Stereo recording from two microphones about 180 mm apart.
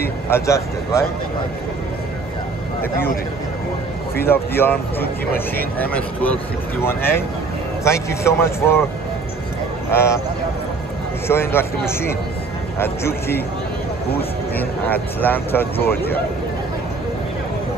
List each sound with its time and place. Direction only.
0.3 s speech: 15° left (ahead or behind)
4.3 s speech: 10° left (ahead or behind)
6.8 s speech: 10° left (ahead or behind)
9.9 s speech: 15° left (ahead or behind)
11.2 s speech: 15° left (ahead or behind)
14.6 s speech: 10° left (ahead or behind)
15.8 s speech: 60° left (ahead or behind)